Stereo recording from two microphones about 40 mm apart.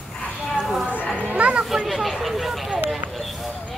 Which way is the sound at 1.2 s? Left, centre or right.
Right.